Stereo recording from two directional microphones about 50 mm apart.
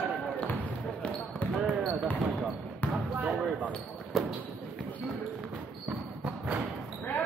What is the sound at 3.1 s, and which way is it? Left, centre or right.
Basketball bounce, right.